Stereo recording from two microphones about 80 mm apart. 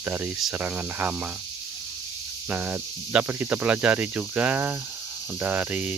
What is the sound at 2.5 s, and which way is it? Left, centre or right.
Speech, right.